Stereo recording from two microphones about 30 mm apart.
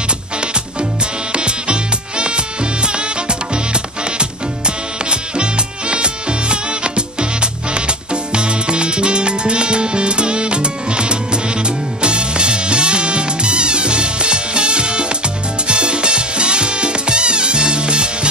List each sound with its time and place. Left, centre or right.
1.3 s music: right